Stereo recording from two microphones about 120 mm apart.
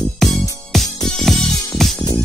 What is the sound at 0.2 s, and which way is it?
Music, 5° left (ahead or behind).